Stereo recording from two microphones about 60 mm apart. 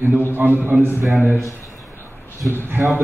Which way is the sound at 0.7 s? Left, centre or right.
Right.